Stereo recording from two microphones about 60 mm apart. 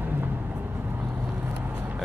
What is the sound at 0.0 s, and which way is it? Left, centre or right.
Vehicle, right.